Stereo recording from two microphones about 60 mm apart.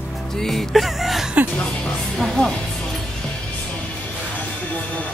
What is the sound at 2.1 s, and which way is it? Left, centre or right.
Speech, centre.